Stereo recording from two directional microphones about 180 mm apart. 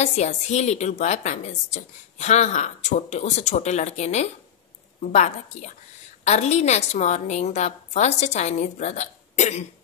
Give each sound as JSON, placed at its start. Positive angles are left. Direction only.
{"t": 0.0, "sound": "a woman's voice", "side_deg": 40}